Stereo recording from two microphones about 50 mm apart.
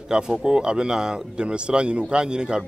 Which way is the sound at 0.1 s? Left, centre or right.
Centre.